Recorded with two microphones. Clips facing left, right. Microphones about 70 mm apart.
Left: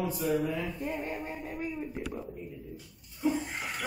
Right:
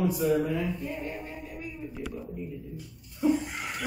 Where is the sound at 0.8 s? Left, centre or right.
Left.